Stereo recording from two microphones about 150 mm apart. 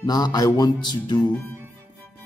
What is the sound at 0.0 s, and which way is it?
A man's voice, 25° left (ahead or behind).